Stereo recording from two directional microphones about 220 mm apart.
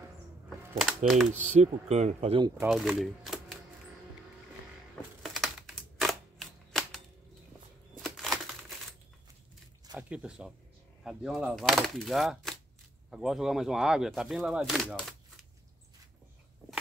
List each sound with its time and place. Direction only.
0.7 s speech: centre (ahead or behind)
1.6 s speech: 30° right (ahead or behind)
2.6 s speech: centre (ahead or behind)
5.2 s typewriter: centre (ahead or behind)
8.0 s a sound: centre (ahead or behind)
9.8 s a sound: 5° right (ahead or behind)
11.1 s speech: centre (ahead or behind)